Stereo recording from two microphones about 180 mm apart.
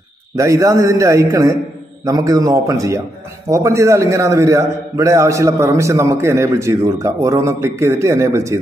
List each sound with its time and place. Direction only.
0.4 s a man's voice: 15° right (ahead or behind)